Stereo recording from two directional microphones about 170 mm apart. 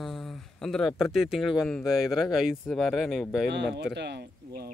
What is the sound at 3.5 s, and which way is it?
Speech, 90° right.